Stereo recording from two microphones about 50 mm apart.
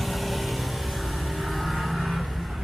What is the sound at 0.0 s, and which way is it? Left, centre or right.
Vehicle, centre.